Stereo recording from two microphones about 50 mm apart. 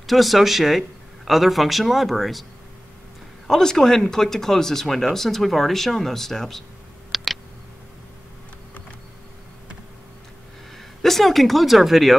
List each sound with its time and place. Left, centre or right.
0.0 s a man's voice: centre
3.4 s speech: centre
7.1 s a sound: centre
11.0 s a man's voice: centre